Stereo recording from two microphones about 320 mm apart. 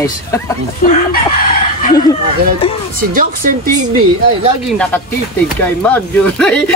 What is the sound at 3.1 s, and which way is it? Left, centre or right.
Speech, right.